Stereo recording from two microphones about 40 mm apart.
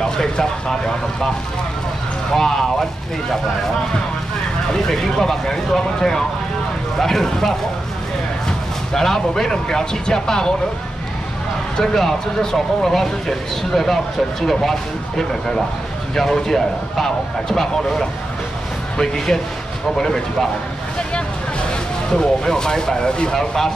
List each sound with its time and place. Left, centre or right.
0.0 s speech: centre
2.3 s speech: centre
4.7 s speech: centre
11.8 s speech: centre
22.1 s speech: centre
23.3 s speech: centre